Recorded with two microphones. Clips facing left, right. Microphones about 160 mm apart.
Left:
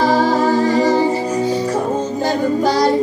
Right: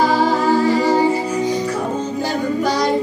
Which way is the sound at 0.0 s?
45° left (ahead or behind).